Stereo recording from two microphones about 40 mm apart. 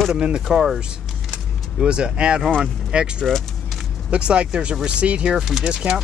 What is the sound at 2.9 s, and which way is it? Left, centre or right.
Speech, right.